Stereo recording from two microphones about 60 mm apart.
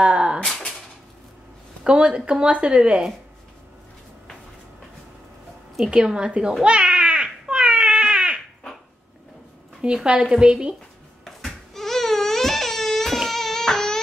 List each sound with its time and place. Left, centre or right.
0.0 s a sound: centre
0.5 s a sound: centre
1.9 s speech: centre
5.9 s speech: centre
6.6 s baby cry: centre
9.8 s speech: centre
11.2 s crying: centre